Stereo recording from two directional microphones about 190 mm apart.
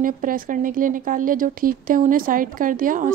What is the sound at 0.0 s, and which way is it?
A woman's voice, 45° right (ahead or behind).